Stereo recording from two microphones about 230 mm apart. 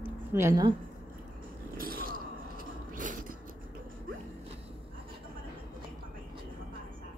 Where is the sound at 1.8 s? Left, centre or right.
Right.